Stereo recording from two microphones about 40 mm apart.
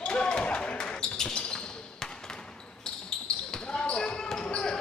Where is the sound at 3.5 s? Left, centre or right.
Left.